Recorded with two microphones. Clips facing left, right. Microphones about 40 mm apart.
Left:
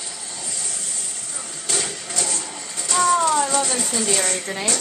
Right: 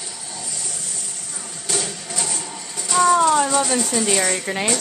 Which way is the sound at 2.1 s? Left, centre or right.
Centre.